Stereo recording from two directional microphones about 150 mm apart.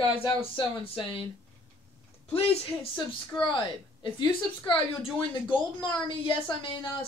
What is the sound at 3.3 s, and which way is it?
A woman's voice, 30° left (ahead or behind).